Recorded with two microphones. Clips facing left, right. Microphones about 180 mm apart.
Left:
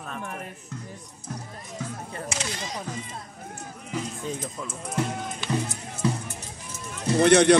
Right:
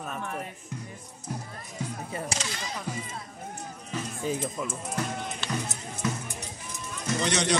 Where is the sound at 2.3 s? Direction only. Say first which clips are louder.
Left 1 dB; 35° right (ahead or behind).